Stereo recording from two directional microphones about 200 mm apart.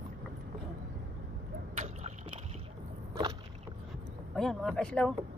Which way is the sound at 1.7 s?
35° right (ahead or behind).